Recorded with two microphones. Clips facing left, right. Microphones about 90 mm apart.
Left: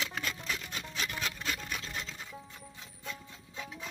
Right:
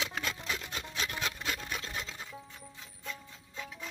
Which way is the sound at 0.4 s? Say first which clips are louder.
Right 1 dB; 15° right (ahead or behind).